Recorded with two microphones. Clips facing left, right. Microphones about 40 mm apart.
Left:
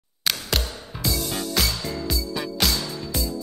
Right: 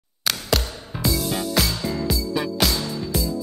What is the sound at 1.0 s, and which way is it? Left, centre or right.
Music, centre.